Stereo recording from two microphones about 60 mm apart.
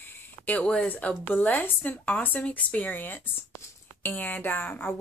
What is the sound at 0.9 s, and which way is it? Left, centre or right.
A woman's voice, left.